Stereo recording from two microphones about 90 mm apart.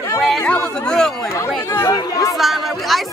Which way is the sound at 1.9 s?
40° left (ahead or behind).